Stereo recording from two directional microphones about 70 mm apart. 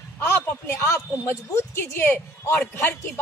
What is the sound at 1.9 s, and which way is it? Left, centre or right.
A man's voice, left.